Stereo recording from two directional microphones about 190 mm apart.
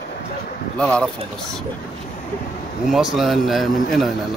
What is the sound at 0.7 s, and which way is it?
Speech, 5° left (ahead or behind).